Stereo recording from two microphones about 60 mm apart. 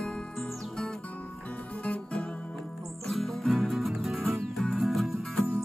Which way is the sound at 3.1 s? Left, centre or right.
Centre.